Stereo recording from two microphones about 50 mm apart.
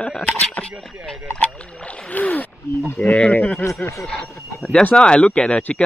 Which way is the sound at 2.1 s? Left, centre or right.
Left.